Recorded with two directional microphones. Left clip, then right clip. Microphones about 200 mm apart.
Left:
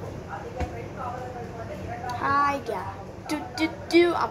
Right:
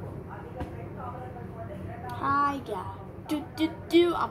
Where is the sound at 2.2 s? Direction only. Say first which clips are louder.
Left 3 dB; 45° right (ahead or behind).